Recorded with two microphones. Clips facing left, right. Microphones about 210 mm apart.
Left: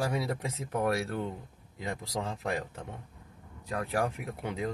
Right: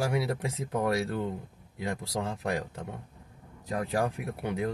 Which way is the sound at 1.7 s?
15° right (ahead or behind).